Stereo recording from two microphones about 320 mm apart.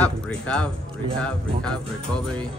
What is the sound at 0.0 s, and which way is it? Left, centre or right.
Music, centre.